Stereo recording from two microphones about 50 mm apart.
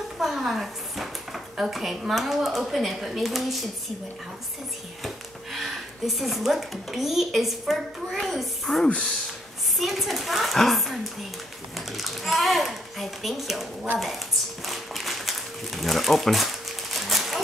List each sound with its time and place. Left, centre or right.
0.2 s speech: centre
5.0 s speech: centre
8.8 s speech: left
9.8 s a child's voice: centre
14.7 s a sound: centre